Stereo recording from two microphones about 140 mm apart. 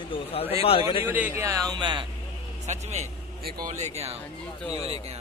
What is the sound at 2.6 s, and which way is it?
Speech, 55° right (ahead or behind).